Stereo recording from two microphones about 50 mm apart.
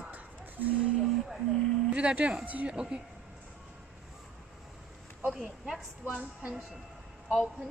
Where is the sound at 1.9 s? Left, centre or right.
Right.